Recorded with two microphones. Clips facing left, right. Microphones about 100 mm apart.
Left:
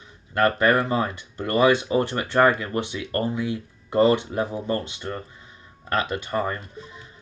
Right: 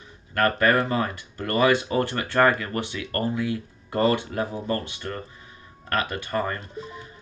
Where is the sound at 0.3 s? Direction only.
20° left (ahead or behind).